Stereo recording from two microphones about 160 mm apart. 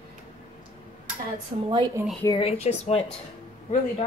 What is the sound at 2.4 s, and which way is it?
Speech, 40° left (ahead or behind).